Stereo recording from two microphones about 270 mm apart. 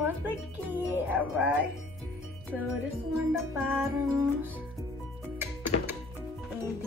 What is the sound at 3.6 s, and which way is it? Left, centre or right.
Speech, centre.